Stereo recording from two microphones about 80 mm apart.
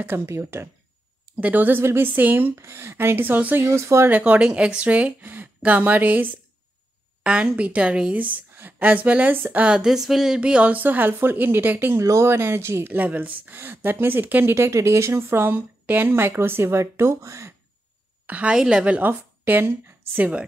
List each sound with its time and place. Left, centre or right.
0.0 s speech: right
1.4 s a woman's voice: right
3.7 s speech: right
4.1 s a woman's voice: centre
12.0 s speech: right
12.9 s a woman's voice: right
14.5 s speech: right
18.2 s a woman's voice: centre